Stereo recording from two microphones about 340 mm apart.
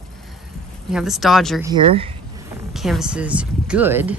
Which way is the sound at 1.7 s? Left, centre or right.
Centre.